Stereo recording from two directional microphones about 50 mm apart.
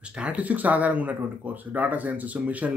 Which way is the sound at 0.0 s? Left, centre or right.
Right.